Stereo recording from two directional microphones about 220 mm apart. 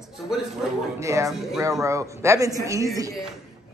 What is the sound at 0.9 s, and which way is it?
A woman's voice, 15° right (ahead or behind).